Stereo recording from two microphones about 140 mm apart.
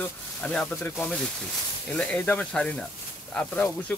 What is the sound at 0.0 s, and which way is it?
Speech, 5° left (ahead or behind).